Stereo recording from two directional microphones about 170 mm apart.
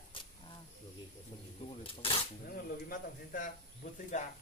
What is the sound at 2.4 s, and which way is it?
Speech, 55° left (ahead or behind).